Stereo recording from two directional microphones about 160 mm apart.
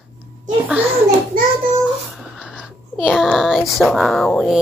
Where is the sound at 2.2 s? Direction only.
5° right (ahead or behind).